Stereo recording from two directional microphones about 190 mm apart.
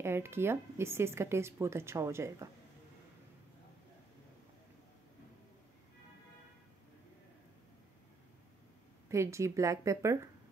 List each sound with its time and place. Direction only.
0.0 s speech: 10° right (ahead or behind)
9.1 s speech: 15° right (ahead or behind)